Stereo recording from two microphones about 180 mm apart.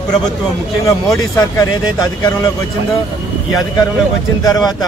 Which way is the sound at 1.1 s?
20° left (ahead or behind).